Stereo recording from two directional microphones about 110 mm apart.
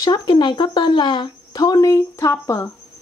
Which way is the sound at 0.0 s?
40° left (ahead or behind).